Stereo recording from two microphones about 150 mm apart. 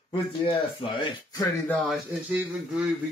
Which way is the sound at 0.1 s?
35° left (ahead or behind).